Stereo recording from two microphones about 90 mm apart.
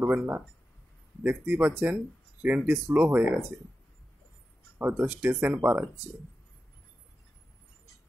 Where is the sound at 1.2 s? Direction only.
20° right (ahead or behind).